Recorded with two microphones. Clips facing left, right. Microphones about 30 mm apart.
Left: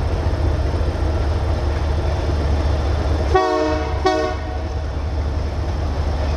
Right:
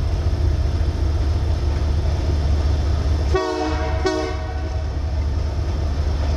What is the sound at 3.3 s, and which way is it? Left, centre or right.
Train, left.